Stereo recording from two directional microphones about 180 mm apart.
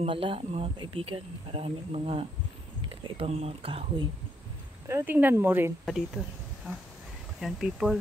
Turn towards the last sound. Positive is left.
turn(degrees=-5)  # may be behind; listen again after turning